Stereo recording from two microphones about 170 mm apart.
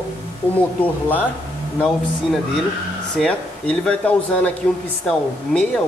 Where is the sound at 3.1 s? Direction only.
5° left (ahead or behind).